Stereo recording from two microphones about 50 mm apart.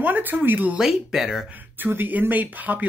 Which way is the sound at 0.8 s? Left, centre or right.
Centre.